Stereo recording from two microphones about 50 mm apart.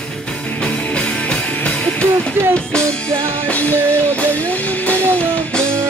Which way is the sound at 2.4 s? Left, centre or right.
Right.